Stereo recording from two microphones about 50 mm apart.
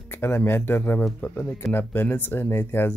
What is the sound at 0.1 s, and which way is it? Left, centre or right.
Music, left.